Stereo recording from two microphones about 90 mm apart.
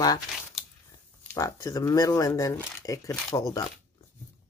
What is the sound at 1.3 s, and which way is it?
Speech, 40° left (ahead or behind).